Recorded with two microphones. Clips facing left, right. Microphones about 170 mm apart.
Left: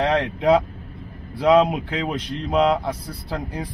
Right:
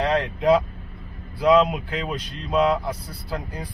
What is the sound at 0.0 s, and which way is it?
Speech, 20° left (ahead or behind).